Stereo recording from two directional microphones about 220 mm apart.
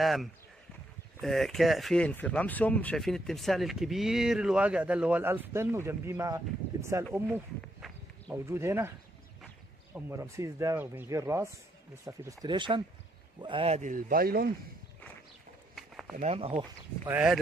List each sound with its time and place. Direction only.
0.0 s speech: centre (ahead or behind)
9.9 s speech: 10° right (ahead or behind); by 14.5 s 45° right (ahead or behind)
15.7 s a sound: centre (ahead or behind)
16.2 s speech: 30° right (ahead or behind)
17.1 s speech: 5° right (ahead or behind)